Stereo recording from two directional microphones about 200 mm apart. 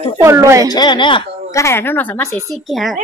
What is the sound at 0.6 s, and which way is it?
A woman's voice, 20° left (ahead or behind).